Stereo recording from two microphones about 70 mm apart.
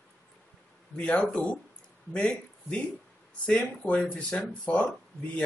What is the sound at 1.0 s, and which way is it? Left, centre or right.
Speech, centre.